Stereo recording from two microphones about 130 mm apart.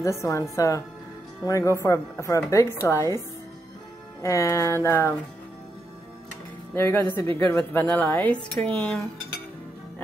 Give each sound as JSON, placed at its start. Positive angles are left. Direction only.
{"t": 0.0, "sound": "speech", "side_deg": 25}
{"t": 4.2, "sound": "speech", "side_deg": 25}
{"t": 6.7, "sound": "speech", "side_deg": 20}